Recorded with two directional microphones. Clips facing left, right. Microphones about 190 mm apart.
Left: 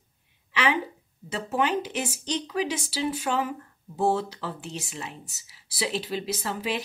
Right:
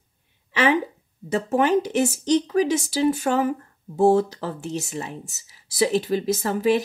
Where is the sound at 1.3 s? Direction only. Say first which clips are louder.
Right 7 dB; 45° right (ahead or behind).